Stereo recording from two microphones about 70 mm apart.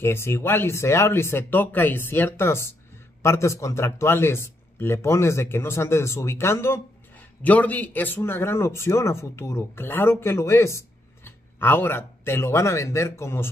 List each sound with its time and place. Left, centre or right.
0.0 s a man's voice: left
7.4 s a man's voice: left